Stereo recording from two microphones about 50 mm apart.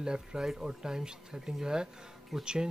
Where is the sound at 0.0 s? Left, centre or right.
Centre.